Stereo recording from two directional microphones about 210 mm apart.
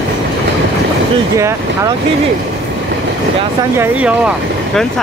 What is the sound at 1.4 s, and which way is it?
Speech, 15° right (ahead or behind).